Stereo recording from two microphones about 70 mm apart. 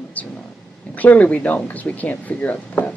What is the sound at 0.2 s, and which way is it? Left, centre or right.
Speech, left.